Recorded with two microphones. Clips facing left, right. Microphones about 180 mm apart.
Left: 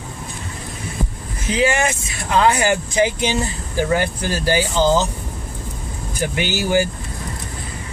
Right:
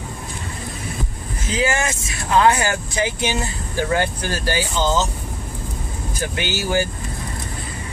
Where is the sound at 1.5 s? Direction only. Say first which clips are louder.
Left 3 dB; 20° left (ahead or behind).